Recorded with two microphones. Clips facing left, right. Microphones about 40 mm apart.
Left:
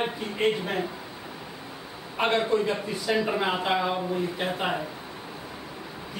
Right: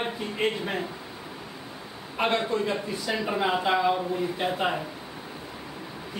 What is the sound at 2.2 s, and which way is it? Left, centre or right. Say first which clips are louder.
Speech: left 2 dB; centre.